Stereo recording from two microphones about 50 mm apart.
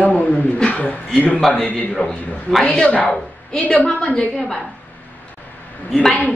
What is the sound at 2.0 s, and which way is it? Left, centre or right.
Speech, left.